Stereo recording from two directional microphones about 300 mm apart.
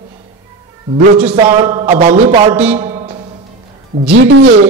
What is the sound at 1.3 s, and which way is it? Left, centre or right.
Speech, centre.